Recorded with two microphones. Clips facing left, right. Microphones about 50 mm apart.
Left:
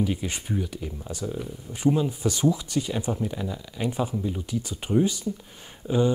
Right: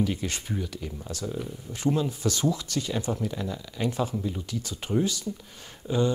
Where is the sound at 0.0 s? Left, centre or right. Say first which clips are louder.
Left 1 dB; centre.